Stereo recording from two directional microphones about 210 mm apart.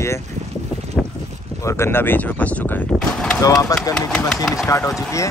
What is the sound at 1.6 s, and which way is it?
Speech, 15° left (ahead or behind).